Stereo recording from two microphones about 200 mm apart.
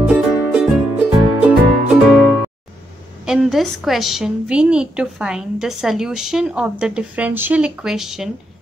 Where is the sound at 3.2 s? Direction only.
5° right (ahead or behind).